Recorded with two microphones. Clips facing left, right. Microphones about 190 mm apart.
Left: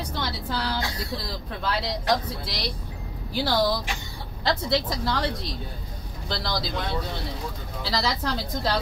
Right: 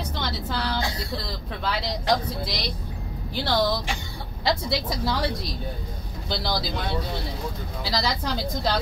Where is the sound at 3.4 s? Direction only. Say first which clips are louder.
Even; 5° left (ahead or behind).